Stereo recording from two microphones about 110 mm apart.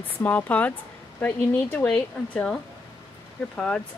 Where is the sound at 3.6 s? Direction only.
10° left (ahead or behind).